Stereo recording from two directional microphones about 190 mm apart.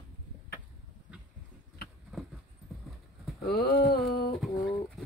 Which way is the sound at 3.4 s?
55° left (ahead or behind).